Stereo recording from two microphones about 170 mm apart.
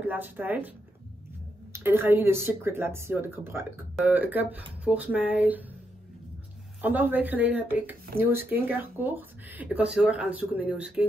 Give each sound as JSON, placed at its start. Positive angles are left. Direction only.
{"t": 0.0, "sound": "speech", "side_deg": -10}
{"t": 1.7, "sound": "speech", "side_deg": -15}
{"t": 6.8, "sound": "speech", "side_deg": -10}